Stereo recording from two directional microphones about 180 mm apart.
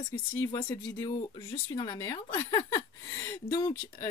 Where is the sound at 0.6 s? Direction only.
10° left (ahead or behind).